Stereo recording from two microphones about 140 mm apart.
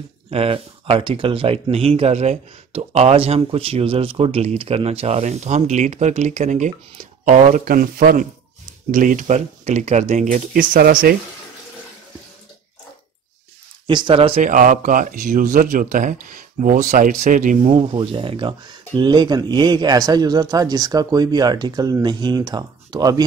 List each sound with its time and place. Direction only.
0.3 s speech: 45° right (ahead or behind); by 8.3 s 85° right
8.9 s speech: 70° right (ahead or behind); by 11.1 s 85° right
13.8 s speech: 35° right (ahead or behind)
14.4 s speech: 70° right (ahead or behind)
17.6 s speech: 40° right (ahead or behind)